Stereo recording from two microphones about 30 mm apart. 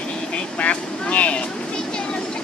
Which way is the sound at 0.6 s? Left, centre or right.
Left.